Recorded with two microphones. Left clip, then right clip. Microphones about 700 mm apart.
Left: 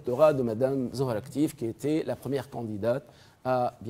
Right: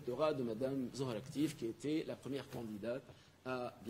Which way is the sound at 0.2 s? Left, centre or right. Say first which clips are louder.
Left 15 dB; left.